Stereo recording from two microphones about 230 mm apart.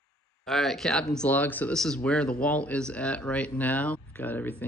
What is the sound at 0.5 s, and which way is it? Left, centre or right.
Speech, centre.